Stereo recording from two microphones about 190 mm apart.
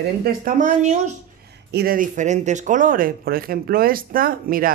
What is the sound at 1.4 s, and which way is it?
Speech, 60° right (ahead or behind).